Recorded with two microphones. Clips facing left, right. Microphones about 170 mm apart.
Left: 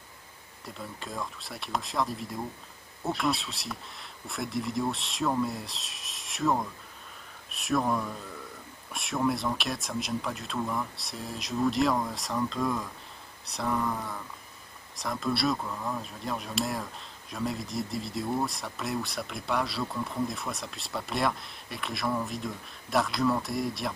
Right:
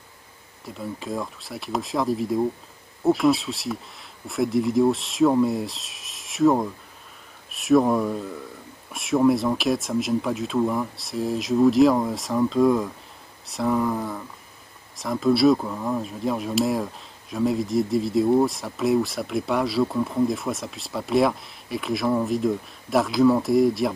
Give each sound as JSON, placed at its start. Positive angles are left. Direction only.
{"t": 0.7, "sound": "speech", "side_deg": 0}
{"t": 7.5, "sound": "speech", "side_deg": 0}
{"t": 8.9, "sound": "speech", "side_deg": 0}
{"t": 15.5, "sound": "speech", "side_deg": -20}
{"t": 16.0, "sound": "speech", "side_deg": 0}